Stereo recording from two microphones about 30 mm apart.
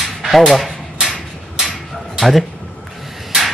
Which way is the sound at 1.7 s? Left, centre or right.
Centre.